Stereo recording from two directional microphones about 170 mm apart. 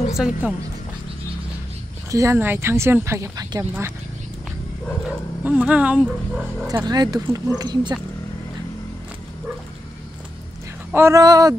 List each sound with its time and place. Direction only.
0.2 s speech: 5° right (ahead or behind)
2.0 s speech: 20° right (ahead or behind)
5.4 s speech: 10° right (ahead or behind)
6.7 s speech: 25° right (ahead or behind)
10.9 s speech: 15° right (ahead or behind)